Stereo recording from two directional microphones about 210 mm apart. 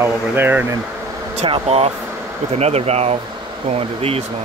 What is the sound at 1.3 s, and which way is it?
Speech, 30° right (ahead or behind).